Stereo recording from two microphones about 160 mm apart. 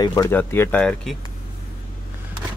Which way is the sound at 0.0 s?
25° left (ahead or behind).